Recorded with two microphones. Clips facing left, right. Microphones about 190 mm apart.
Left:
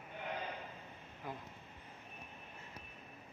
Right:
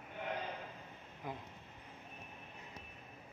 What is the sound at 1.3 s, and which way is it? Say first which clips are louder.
Speech: right 1 dB; 15° right (ahead or behind).